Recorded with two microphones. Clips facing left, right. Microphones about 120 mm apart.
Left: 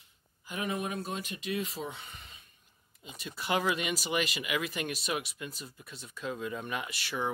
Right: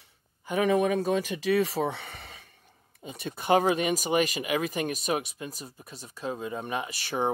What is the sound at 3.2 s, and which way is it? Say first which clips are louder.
Speech: right 7 dB; 50° right (ahead or behind).